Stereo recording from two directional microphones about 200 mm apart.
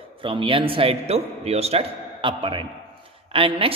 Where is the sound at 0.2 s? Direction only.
25° right (ahead or behind).